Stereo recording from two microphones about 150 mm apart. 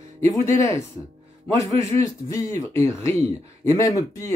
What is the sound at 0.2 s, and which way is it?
Speech, 20° left (ahead or behind).